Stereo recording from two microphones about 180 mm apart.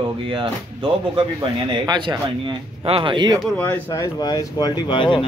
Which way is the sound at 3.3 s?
10° left (ahead or behind).